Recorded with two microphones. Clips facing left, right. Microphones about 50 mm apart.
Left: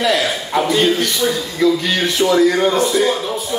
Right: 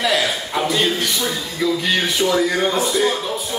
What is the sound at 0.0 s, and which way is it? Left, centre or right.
Speech, centre.